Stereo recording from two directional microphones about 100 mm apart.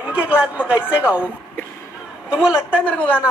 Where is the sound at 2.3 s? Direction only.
10° right (ahead or behind).